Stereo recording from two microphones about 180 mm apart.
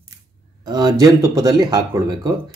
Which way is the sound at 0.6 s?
20° right (ahead or behind).